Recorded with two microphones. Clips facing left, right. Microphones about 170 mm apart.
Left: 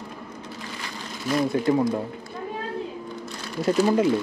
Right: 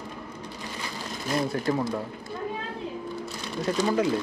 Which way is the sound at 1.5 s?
20° left (ahead or behind).